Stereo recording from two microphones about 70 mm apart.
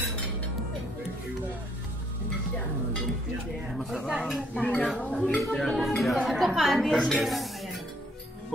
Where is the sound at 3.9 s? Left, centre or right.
Centre.